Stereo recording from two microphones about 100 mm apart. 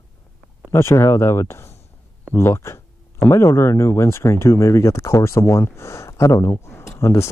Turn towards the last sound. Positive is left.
turn(degrees=25)  # may be behind; listen again after turning